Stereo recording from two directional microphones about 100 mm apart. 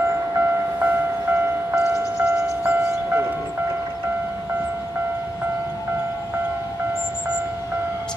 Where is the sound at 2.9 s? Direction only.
20° right (ahead or behind).